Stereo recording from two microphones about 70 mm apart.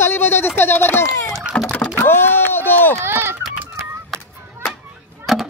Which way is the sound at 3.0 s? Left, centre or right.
Right.